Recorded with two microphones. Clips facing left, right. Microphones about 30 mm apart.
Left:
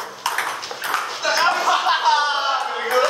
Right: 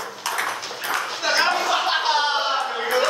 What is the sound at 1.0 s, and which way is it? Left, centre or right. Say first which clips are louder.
Ping: right 1 dB; centre.